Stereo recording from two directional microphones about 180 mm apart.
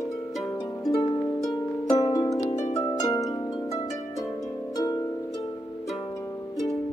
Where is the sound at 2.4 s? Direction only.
40° left (ahead or behind).